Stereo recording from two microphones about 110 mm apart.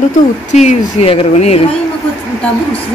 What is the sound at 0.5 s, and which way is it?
Speech, 90° left.